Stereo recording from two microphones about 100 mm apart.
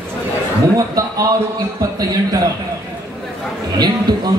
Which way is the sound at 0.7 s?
35° right (ahead or behind).